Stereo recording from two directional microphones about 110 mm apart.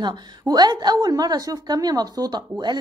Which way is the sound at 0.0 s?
40° right (ahead or behind).